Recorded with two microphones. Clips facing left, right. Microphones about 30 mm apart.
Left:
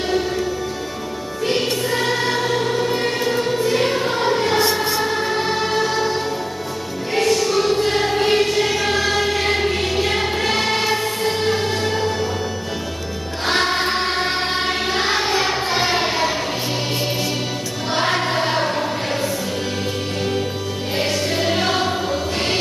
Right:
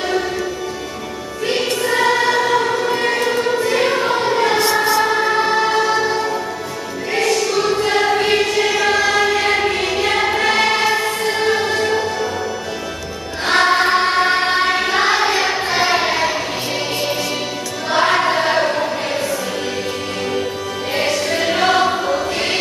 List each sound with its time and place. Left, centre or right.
1.4 s choir: centre
5.0 s music: right
7.2 s choir: centre
11.3 s music: centre
13.5 s choir: centre
17.9 s choir: centre
20.9 s music: centre